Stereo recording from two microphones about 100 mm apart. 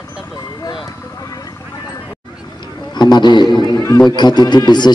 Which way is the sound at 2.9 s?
50° left (ahead or behind).